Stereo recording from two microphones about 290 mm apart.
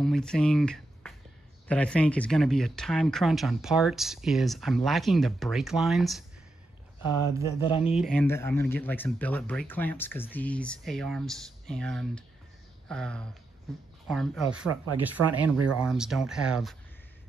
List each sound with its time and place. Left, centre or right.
0.0 s speech: centre
7.6 s speech: centre
7.9 s speech: centre